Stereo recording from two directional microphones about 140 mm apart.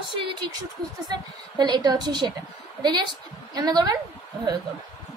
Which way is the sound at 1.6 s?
30° right (ahead or behind).